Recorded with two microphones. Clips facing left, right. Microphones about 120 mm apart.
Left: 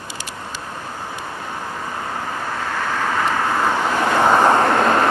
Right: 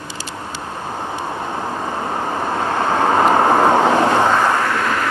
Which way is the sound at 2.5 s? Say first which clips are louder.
Right 6 dB; 35° right (ahead or behind).